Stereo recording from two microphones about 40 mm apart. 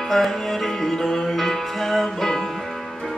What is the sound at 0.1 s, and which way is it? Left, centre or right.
Music, centre.